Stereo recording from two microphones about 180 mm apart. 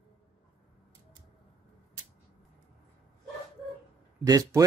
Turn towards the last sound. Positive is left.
turn(degrees=-20)  # may be behind; listen again after turning